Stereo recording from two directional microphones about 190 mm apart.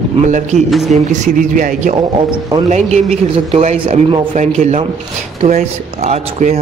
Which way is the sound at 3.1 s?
35° right (ahead or behind).